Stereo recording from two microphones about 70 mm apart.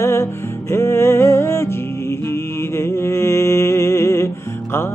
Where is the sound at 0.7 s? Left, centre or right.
Left.